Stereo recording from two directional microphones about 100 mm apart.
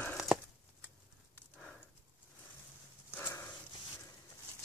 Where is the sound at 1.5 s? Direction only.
Centre (ahead or behind).